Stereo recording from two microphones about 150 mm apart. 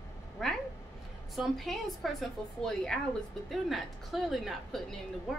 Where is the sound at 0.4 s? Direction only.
Centre (ahead or behind).